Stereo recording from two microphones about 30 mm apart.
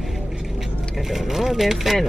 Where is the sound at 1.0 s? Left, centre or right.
Centre.